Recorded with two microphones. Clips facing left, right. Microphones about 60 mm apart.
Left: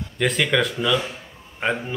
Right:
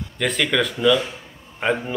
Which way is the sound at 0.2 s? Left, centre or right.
Centre.